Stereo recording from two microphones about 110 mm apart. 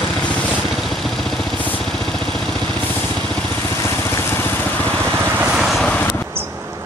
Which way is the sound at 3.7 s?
25° left (ahead or behind).